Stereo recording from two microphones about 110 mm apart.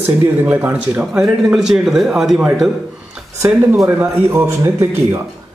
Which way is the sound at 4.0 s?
20° right (ahead or behind).